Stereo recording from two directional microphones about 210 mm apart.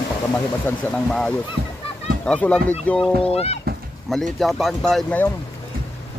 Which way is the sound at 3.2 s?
30° left (ahead or behind).